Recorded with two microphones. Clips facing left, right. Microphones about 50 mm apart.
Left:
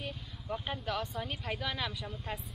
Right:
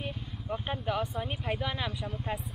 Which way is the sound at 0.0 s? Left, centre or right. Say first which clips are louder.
Right 4 dB; centre.